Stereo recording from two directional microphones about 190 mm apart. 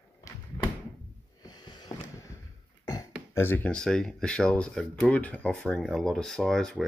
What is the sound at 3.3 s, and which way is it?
Speech, 10° left (ahead or behind).